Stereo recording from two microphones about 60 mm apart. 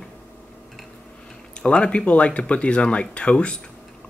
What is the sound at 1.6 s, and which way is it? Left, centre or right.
Speech, centre.